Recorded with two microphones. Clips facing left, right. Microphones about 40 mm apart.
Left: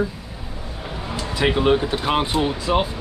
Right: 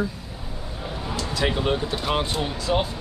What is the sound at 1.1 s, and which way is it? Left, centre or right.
Speech, centre.